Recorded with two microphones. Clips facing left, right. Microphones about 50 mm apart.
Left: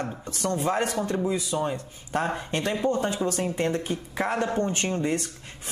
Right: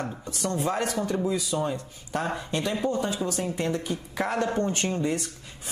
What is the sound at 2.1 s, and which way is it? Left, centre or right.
Speech, left.